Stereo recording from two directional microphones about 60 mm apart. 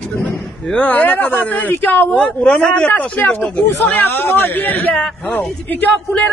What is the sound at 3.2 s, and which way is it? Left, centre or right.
Speech, left.